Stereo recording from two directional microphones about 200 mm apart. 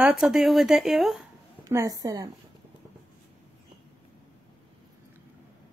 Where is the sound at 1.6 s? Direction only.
15° right (ahead or behind).